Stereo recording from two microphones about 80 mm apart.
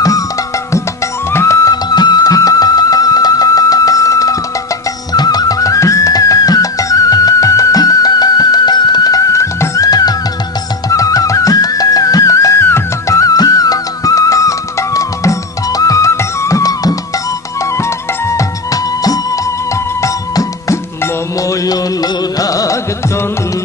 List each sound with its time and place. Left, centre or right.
1.3 s music: left
1.6 s music: left
5.1 s music: left
12.6 s music: left
13.2 s music: left